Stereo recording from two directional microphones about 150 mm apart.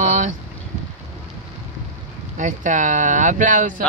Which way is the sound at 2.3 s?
55° right (ahead or behind).